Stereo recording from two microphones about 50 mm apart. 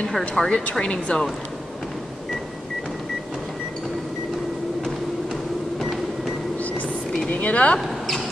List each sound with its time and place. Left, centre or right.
0.4 s speech: centre
5.8 s music: centre
7.2 s speech: left